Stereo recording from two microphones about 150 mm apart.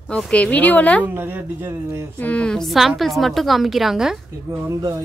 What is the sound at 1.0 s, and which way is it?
Speech, 15° right (ahead or behind).